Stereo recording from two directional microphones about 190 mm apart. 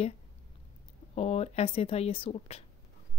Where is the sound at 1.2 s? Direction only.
35° left (ahead or behind).